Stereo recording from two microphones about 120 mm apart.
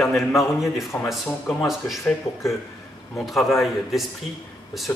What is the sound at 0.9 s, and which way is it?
Speech, 15° left (ahead or behind).